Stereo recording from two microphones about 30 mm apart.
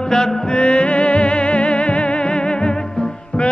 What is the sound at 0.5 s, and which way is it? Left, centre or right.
Music, left.